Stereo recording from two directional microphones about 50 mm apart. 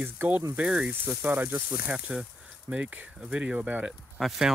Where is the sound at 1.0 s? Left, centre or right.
Right.